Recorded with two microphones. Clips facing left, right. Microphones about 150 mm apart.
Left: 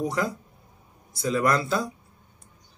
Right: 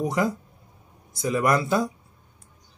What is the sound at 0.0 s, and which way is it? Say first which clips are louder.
Speech: right 3 dB; 15° right (ahead or behind).